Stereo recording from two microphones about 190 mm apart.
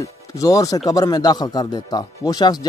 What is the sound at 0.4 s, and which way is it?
Speech, 20° left (ahead or behind).